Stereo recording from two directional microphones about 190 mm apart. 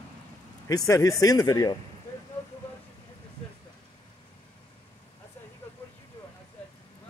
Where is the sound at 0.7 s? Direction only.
15° left (ahead or behind).